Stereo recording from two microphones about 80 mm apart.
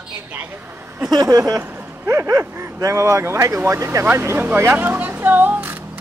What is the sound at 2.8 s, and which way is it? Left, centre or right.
Speech, right.